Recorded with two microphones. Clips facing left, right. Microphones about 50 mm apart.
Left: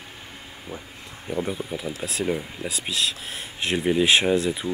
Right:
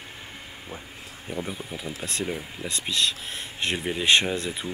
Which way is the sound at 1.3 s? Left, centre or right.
Centre.